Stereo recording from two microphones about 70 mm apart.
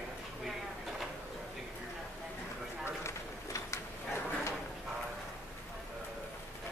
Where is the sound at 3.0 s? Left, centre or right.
Left.